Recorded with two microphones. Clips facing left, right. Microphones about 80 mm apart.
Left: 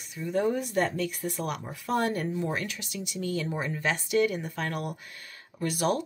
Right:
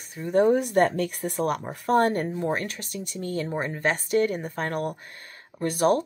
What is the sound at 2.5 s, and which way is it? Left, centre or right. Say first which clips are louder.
Speech: right 4 dB; right.